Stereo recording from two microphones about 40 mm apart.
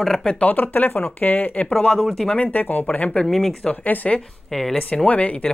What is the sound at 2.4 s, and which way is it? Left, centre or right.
Speech, left.